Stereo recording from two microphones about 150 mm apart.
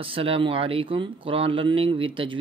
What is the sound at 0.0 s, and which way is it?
Speech, 35° right (ahead or behind).